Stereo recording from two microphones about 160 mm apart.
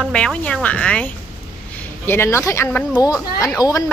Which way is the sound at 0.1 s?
5° left (ahead or behind).